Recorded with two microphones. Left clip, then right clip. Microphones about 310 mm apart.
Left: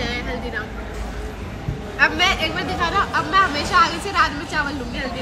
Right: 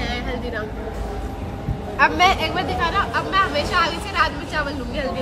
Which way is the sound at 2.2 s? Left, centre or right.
Right.